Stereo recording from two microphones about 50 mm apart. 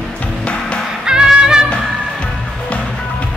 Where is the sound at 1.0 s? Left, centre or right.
Centre.